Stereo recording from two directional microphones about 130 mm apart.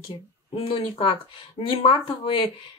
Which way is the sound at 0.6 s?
45° left (ahead or behind).